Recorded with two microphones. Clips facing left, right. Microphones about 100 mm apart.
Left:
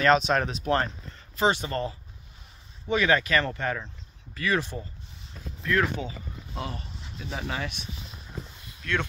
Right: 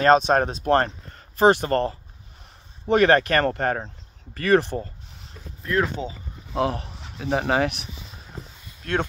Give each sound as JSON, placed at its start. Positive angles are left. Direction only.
{"t": 0.0, "sound": "speech", "side_deg": -40}
{"t": 5.6, "sound": "speech", "side_deg": -30}
{"t": 6.5, "sound": "speech", "side_deg": -70}
{"t": 8.8, "sound": "speech", "side_deg": -40}